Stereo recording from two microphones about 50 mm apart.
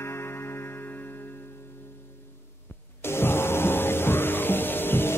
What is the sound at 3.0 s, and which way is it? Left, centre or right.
Music, left.